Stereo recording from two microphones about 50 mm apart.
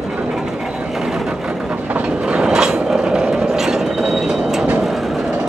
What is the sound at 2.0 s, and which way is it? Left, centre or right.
Train, right.